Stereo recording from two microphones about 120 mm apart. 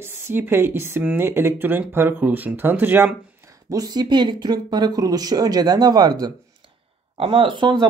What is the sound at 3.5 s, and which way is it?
Speech, 30° right (ahead or behind).